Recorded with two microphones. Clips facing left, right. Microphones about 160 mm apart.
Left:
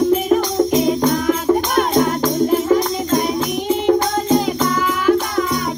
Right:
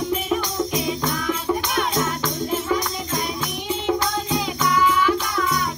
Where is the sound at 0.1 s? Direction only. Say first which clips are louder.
Left 8 dB; 40° left (ahead or behind).